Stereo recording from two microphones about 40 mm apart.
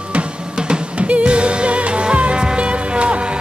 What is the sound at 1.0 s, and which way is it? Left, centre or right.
Music, right.